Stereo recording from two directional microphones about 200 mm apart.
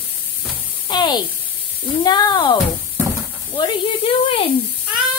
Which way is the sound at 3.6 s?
25° left (ahead or behind).